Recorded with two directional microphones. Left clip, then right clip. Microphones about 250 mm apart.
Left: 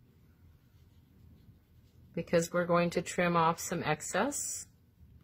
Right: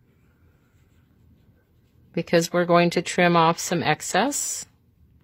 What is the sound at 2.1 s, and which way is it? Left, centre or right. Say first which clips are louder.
Speech: right 9 dB; right.